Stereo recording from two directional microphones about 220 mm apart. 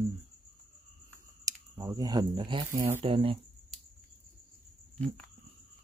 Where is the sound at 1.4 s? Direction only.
15° right (ahead or behind).